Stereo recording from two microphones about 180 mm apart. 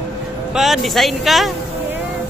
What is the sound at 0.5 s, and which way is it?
Speech, centre (ahead or behind).